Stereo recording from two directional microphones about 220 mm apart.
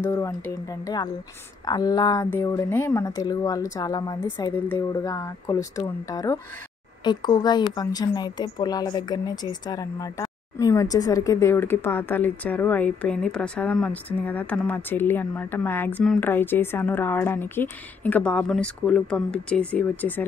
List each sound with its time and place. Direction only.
0.0 s a woman's voice: 15° left (ahead or behind)